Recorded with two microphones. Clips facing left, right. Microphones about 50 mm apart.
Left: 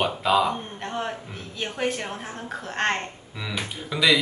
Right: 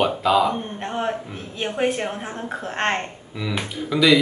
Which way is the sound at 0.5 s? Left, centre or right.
Right.